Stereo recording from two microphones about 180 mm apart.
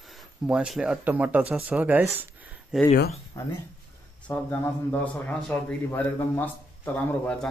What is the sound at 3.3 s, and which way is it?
A man's voice, 15° left (ahead or behind).